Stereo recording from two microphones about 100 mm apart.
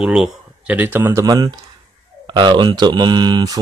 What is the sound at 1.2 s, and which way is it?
Speech, 40° right (ahead or behind).